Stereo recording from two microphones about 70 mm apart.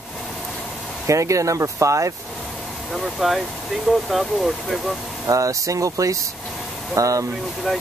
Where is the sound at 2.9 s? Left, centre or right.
Centre.